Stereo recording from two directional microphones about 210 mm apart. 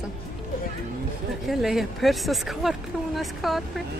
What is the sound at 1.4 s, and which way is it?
Speech, centre (ahead or behind).